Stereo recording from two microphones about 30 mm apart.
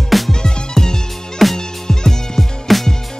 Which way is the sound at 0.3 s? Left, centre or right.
Left.